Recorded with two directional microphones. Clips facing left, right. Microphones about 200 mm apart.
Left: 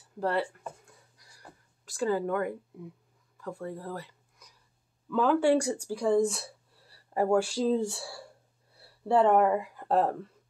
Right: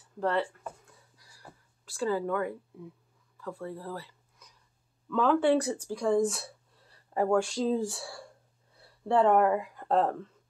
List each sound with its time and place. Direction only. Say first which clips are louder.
0.2 s speech: even; 10° left (ahead or behind)
1.9 s speech: left 1 dB; 15° left (ahead or behind)
3.4 s speech: left 1 dB; 15° left (ahead or behind)
3.9 s a sound: left 1 dB; 15° left (ahead or behind)
5.1 s speech: left 1 dB; 5° left (ahead or behind)